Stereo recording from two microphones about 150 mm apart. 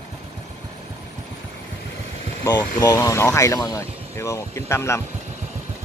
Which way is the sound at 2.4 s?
20° left (ahead or behind).